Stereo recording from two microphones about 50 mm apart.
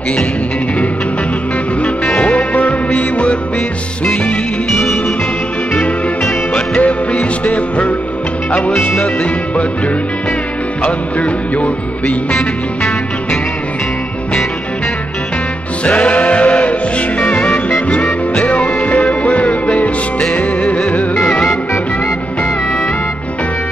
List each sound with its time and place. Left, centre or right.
1.8 s music: left
6.5 s music: left
10.8 s music: left
15.8 s music: left